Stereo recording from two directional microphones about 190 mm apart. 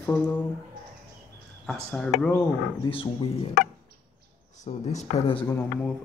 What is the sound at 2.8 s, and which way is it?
Speech, 25° left (ahead or behind).